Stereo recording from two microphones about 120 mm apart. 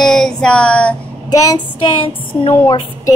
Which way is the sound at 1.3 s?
35° left (ahead or behind).